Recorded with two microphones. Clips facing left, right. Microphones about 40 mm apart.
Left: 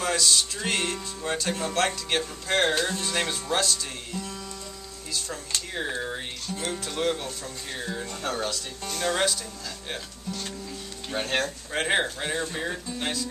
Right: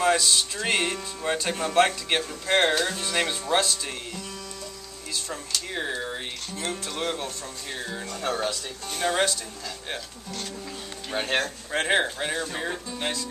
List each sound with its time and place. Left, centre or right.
0.0 s speech: centre
6.0 s music: centre
6.9 s speech: centre
8.8 s speech: right
11.1 s speech: centre